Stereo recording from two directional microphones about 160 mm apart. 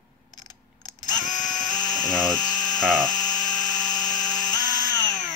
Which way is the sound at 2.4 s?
50° left (ahead or behind).